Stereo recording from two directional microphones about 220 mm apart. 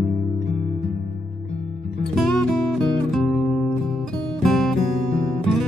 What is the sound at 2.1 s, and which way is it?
Music, centre (ahead or behind).